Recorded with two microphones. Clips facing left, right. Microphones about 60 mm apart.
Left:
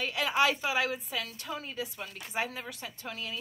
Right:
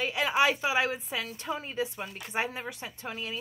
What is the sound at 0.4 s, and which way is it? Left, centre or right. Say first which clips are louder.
Speech: right 2 dB; centre.